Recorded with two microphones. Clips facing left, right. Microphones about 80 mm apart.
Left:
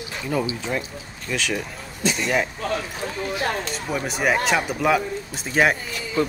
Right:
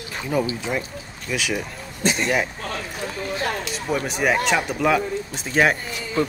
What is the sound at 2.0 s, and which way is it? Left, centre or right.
Speech, right.